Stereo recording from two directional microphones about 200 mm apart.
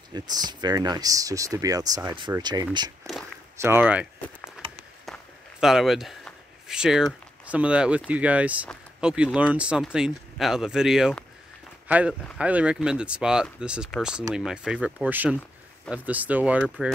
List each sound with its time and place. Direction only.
0.1 s speech: 20° right (ahead or behind)
5.0 s a sound: centre (ahead or behind)
8.1 s speech: 5° right (ahead or behind)